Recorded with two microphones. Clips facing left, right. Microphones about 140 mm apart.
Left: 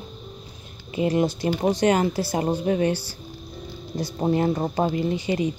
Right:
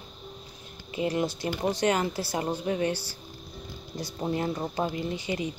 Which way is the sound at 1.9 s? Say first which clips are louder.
Left 6 dB; 45° left (ahead or behind).